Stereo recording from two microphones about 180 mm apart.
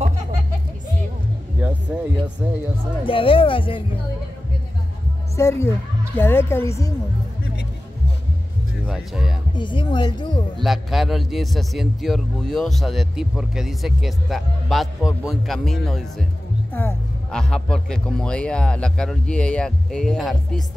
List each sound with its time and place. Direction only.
1.6 s a sound: 10° right (ahead or behind)
2.4 s music: 10° right (ahead or behind)
3.1 s speech: 30° left (ahead or behind)
5.3 s a woman's voice: 15° left (ahead or behind)
8.8 s speech: 5° right (ahead or behind)
9.6 s speech: 25° left (ahead or behind)
10.6 s a man's voice: centre (ahead or behind)